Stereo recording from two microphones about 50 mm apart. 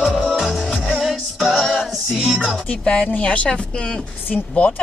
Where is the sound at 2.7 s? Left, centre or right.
Centre.